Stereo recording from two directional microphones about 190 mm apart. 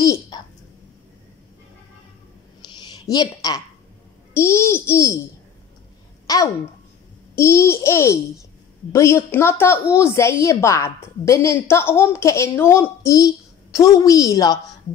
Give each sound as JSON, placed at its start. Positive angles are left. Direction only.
{"t": 0.0, "sound": "a sound", "side_deg": 20}
{"t": 2.8, "sound": "a woman's voice", "side_deg": 20}
{"t": 6.2, "sound": "a woman's voice", "side_deg": 20}